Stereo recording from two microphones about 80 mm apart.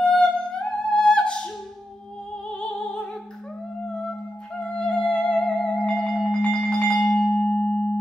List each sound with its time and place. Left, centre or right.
0.1 s music: centre
2.6 s music: centre
4.6 s music: centre
6.1 s marimba: centre
6.4 s marimba: centre